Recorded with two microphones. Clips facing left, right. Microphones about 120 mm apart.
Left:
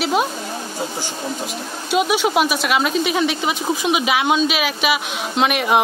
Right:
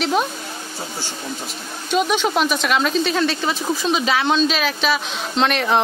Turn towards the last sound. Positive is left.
turn(degrees=10)  # may be behind; listen again after turning